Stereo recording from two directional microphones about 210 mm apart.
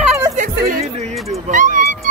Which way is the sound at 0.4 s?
40° right (ahead or behind).